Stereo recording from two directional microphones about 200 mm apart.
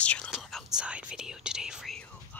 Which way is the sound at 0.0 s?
5° left (ahead or behind).